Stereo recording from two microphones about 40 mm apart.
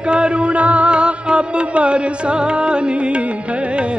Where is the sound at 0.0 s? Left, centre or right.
Right.